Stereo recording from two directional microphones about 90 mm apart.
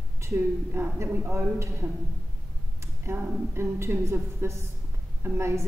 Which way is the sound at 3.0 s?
25° right (ahead or behind).